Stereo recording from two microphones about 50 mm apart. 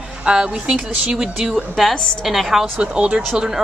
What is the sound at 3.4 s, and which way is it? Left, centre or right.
Speech, centre.